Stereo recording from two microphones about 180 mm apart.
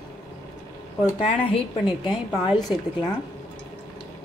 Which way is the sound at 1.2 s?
30° left (ahead or behind).